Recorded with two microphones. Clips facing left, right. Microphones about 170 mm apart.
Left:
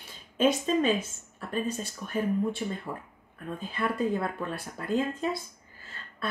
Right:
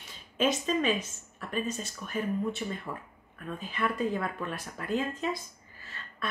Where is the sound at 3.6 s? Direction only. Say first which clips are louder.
Left 1 dB; 30° left (ahead or behind).